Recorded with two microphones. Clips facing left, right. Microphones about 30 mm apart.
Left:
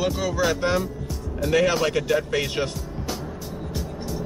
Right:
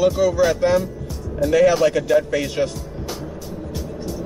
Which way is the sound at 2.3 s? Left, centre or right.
Left.